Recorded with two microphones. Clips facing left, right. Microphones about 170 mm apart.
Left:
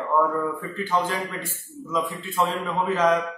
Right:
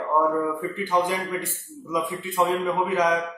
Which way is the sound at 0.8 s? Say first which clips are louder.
Right 1 dB; 15° right (ahead or behind).